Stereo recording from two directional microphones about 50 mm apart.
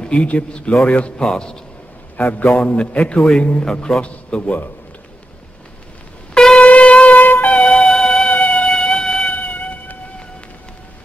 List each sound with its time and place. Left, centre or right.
0.0 s a man's voice: left
1.2 s a man's voice: centre
2.1 s a man's voice: left
6.3 s shofar: centre
6.6 s shofar: left
7.5 s emergency vehicle: left
7.9 s music: centre
8.3 s music: left
9.3 s a sound: left